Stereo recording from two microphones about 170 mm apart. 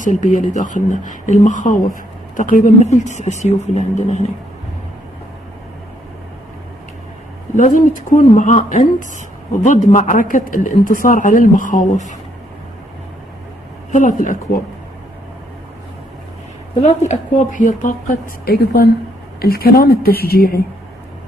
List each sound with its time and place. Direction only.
0.0 s speech: 50° left (ahead or behind)
7.5 s speech: 50° left (ahead or behind)
13.9 s speech: 50° left (ahead or behind)
16.8 s speech: 45° left (ahead or behind)
18.4 s a woman's voice: 65° left (ahead or behind)